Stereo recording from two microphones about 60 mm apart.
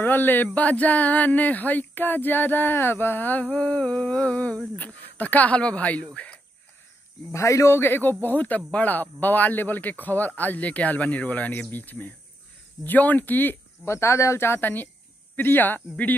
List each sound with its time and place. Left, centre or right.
0.0 s speech: left
3.5 s a man's voice: centre
7.3 s speech: left
7.7 s a man's voice: left
13.8 s speech: left